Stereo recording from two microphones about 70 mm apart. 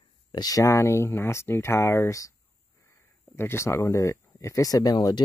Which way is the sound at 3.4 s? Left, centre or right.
Left.